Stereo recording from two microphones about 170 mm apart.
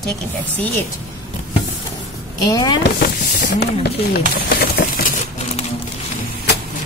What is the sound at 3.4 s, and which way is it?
Speech, 65° left (ahead or behind).